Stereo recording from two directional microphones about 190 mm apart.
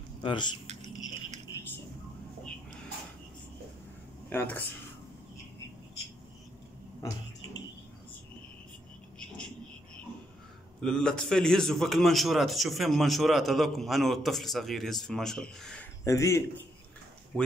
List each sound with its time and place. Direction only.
0.2 s speech: 25° left (ahead or behind)
4.3 s speech: 10° left (ahead or behind)
10.8 s a man's voice: 5° left (ahead or behind)